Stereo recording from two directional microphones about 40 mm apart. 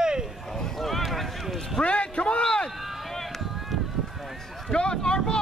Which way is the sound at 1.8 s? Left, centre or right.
Left.